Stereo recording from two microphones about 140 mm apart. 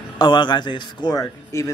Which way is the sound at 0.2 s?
35° left (ahead or behind).